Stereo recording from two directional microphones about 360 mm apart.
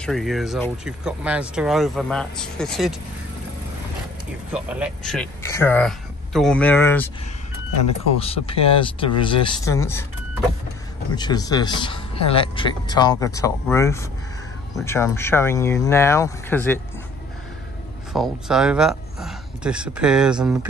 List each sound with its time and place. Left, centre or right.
0.0 s speech: centre
4.5 s speech: centre
8.2 s a man's voice: centre
11.1 s a man's voice: centre
18.1 s speech: centre